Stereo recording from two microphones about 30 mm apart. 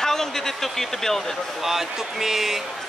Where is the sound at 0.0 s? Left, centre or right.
Centre.